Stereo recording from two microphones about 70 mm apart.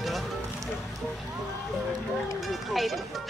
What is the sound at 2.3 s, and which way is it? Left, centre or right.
Music, centre.